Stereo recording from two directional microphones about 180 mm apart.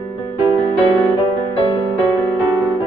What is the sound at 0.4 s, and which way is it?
Music, 20° right (ahead or behind).